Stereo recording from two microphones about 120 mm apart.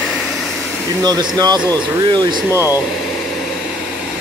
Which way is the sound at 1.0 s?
35° right (ahead or behind).